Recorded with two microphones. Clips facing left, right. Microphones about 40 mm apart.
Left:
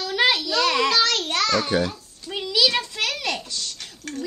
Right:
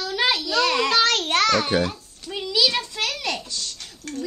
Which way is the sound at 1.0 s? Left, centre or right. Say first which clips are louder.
Right 3 dB; right.